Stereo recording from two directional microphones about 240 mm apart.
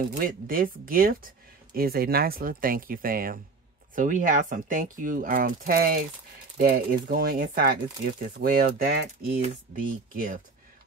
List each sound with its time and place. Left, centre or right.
0.2 s speech: right